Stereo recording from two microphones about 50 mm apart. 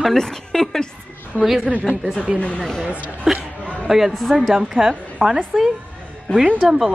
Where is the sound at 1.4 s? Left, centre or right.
Centre.